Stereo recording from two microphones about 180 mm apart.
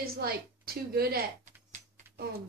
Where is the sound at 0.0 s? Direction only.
55° right (ahead or behind).